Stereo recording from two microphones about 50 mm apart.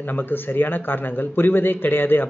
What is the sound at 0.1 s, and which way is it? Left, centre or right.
A man's voice, left.